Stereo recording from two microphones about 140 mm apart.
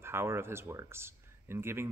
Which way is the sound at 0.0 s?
15° right (ahead or behind).